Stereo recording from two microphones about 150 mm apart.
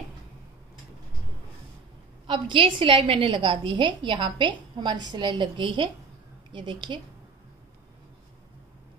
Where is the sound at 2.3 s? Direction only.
30° right (ahead or behind).